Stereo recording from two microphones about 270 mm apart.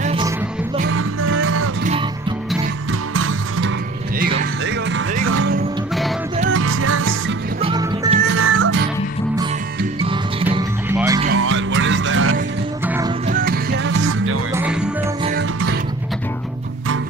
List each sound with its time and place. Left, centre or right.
0.0 s music: centre
1.4 s music: right
3.2 s music: right
5.2 s music: right
6.5 s music: right
7.6 s music: centre
8.3 s music: right
10.9 s music: centre
11.2 s music: right
12.8 s music: centre
13.3 s music: right
14.5 s music: centre